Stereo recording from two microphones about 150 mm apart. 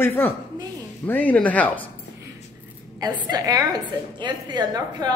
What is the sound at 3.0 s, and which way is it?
A woman's voice, 25° right (ahead or behind).